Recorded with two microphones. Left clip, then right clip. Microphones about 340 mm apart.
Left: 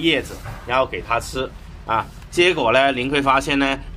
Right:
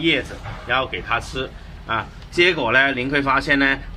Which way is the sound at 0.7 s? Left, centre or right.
Centre.